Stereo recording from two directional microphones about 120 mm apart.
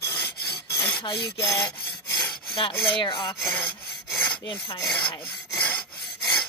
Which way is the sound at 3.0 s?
40° left (ahead or behind).